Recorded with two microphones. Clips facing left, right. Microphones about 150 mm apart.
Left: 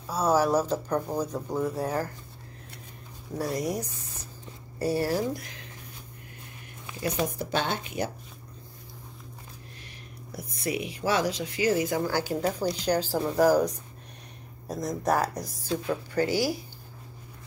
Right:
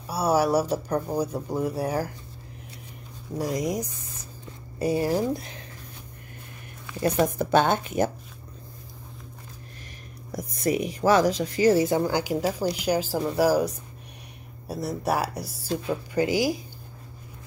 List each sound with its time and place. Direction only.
0.0 s speech: 10° right (ahead or behind)
3.3 s speech: 15° right (ahead or behind)
7.0 s speech: 50° right (ahead or behind)
10.3 s speech: 45° right (ahead or behind)
12.0 s speech: 15° right (ahead or behind)
14.7 s speech: 10° right (ahead or behind)